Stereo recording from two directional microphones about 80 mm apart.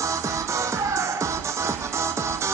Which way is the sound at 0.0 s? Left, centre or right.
Right.